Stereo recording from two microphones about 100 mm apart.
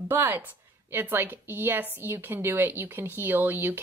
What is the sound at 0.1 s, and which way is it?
Speech, 20° right (ahead or behind).